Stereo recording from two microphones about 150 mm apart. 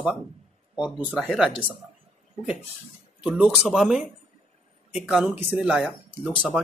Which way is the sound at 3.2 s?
10° right (ahead or behind).